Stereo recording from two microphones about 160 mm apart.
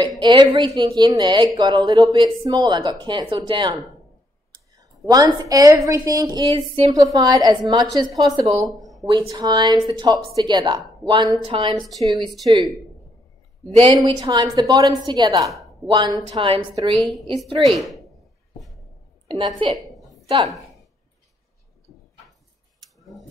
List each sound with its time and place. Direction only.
0.0 s speech: 30° right (ahead or behind)
4.7 s speech: 25° right (ahead or behind)
6.9 s speech: 20° right (ahead or behind)
8.7 s a sound: centre (ahead or behind)
9.0 s a woman's voice: 30° right (ahead or behind)
11.8 s a woman's voice: centre (ahead or behind)
12.4 s a woman's voice: 30° right (ahead or behind)
13.7 s speech: 35° right (ahead or behind)
17.0 s a woman's voice: centre (ahead or behind)
19.2 s a woman's voice: 30° right (ahead or behind)